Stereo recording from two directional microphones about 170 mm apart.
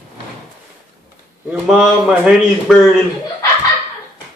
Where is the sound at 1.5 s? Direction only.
5° right (ahead or behind).